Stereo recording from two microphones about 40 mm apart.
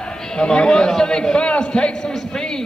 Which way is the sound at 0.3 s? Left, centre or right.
Left.